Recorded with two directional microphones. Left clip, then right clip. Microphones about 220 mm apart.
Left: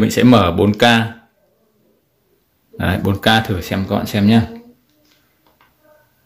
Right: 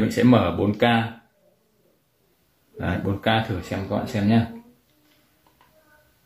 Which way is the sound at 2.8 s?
50° left (ahead or behind).